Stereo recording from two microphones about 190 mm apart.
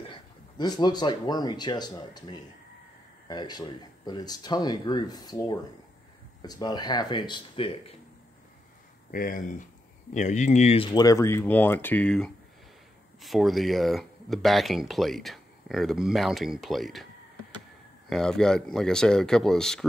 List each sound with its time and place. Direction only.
0.1 s speech: 25° left (ahead or behind)
9.1 s speech: 45° left (ahead or behind)
10.9 s speech: 20° left (ahead or behind); by 17.1 s centre (ahead or behind)
18.1 s speech: 5° left (ahead or behind)